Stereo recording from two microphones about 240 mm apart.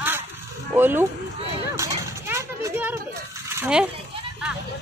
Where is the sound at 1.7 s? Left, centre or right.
Centre.